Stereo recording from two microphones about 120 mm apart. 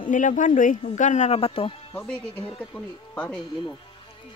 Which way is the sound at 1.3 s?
50° left (ahead or behind).